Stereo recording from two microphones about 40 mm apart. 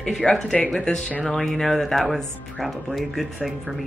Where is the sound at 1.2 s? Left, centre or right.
Centre.